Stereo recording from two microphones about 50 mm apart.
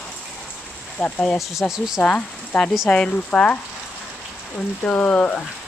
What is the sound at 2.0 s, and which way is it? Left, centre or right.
Speech, left.